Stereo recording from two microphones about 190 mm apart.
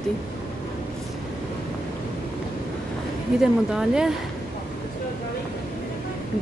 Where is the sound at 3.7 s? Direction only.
5° right (ahead or behind).